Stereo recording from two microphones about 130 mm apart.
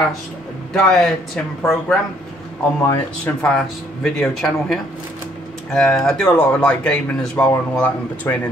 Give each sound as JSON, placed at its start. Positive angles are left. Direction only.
{"t": 0.7, "sound": "a man's voice", "side_deg": 0}
{"t": 1.6, "sound": "speech", "side_deg": 15}
{"t": 3.4, "sound": "a man's voice", "side_deg": 5}